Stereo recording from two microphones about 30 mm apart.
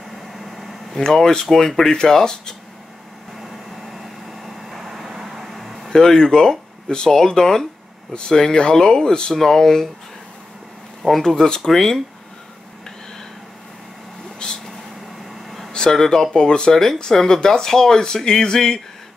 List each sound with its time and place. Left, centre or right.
0.3 s vehicle: centre
0.9 s speech: centre
4.4 s vehicle: centre
5.9 s speech: left
9.3 s speech: centre
11.1 s speech: centre
14.4 s vehicle: left
15.7 s speech: left